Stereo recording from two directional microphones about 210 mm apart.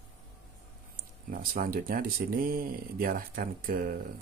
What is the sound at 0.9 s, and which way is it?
Speech, 40° right (ahead or behind).